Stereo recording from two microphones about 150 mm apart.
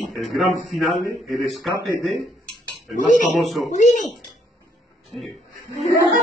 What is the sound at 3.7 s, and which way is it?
Speech, 50° left (ahead or behind).